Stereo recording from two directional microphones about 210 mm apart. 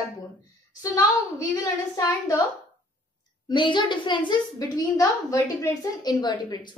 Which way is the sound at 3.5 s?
20° left (ahead or behind).